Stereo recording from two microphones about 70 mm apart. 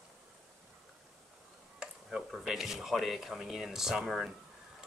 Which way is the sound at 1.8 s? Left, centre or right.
Centre.